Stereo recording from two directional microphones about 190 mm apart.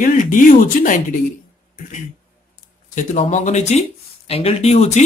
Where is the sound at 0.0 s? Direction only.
45° left (ahead or behind).